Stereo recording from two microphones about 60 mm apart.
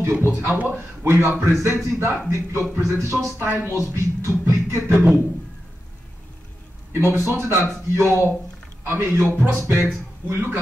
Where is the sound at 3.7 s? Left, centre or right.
Right.